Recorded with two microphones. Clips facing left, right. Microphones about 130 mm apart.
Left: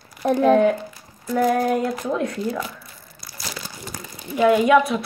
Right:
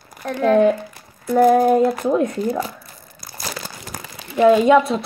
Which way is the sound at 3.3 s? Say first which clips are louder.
Right 4 dB; 50° right (ahead or behind).